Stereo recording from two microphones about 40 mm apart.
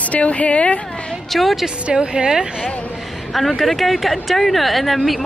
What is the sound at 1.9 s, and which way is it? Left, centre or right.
Speech, right.